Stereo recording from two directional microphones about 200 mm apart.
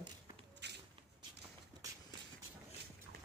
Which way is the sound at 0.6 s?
60° right (ahead or behind).